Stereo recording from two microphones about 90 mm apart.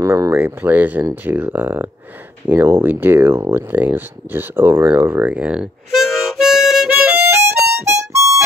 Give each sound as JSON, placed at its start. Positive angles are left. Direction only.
{"t": 0.0, "sound": "speech", "side_deg": -30}
{"t": 5.3, "sound": "harmonica", "side_deg": -15}
{"t": 7.4, "sound": "harmonica", "side_deg": -30}